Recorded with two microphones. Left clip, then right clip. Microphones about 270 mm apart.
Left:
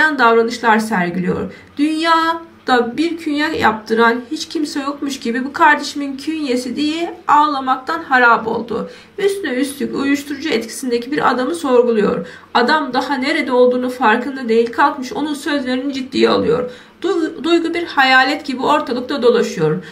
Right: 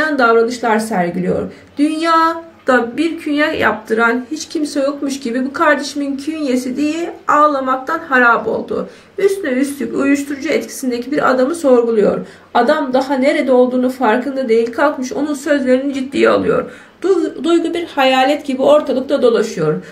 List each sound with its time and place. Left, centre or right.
0.0 s speech: centre
18.2 s speech: right
19.0 s speech: centre